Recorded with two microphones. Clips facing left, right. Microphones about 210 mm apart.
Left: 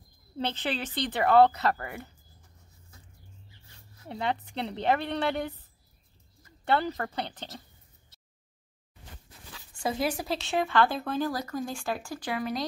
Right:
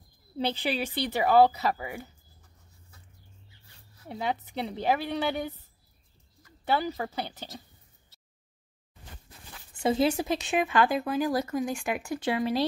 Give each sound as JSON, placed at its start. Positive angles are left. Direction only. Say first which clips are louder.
{"t": 0.4, "sound": "speech", "louder": "right 2 dB", "side_deg": -10}
{"t": 4.1, "sound": "a woman's voice", "louder": "even", "side_deg": -5}
{"t": 6.6, "sound": "speech", "louder": "left 1 dB", "side_deg": -5}
{"t": 9.8, "sound": "speech", "louder": "right 5 dB", "side_deg": -25}